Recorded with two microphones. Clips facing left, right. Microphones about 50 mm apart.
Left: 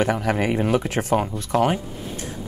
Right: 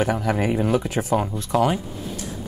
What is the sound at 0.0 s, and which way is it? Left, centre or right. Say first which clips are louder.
Speech: left 1 dB; left.